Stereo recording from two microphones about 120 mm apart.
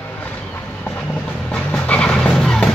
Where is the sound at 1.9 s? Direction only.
10° left (ahead or behind).